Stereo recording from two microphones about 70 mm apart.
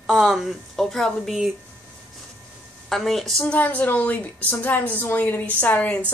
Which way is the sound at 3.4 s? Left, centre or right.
Left.